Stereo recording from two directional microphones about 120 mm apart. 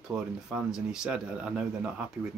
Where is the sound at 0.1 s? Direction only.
5° right (ahead or behind).